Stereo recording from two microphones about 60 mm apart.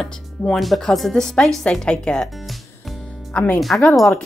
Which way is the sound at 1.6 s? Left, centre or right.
Centre.